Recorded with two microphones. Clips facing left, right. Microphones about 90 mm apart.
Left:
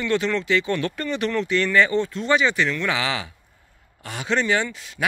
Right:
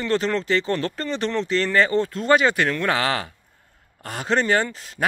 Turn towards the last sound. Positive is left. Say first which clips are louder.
# right 2 dB
turn(degrees=-40)  # may be behind; listen again after turning